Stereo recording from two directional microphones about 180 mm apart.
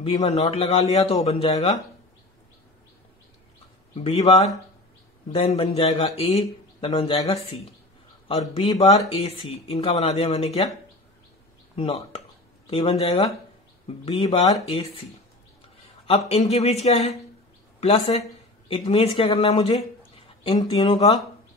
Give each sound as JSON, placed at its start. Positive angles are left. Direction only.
{"t": 0.0, "sound": "speech", "side_deg": 35}
{"t": 3.9, "sound": "speech", "side_deg": 35}
{"t": 11.7, "sound": "speech", "side_deg": 35}
{"t": 16.1, "sound": "speech", "side_deg": 35}